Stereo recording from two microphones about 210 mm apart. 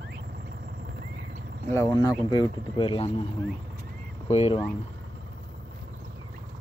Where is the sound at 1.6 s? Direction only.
15° left (ahead or behind).